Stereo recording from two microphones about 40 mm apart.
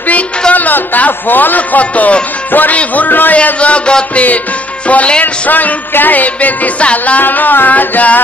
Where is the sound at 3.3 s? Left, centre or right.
Left.